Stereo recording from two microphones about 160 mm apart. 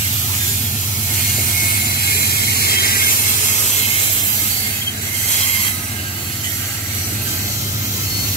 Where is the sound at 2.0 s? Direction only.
75° left (ahead or behind).